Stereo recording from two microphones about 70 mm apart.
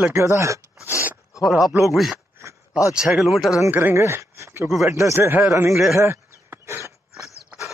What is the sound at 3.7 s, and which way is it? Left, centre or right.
Speech, right.